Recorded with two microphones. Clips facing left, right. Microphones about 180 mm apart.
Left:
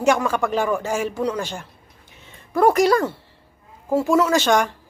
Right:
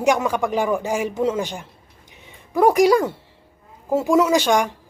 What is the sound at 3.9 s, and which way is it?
Speech, 15° right (ahead or behind).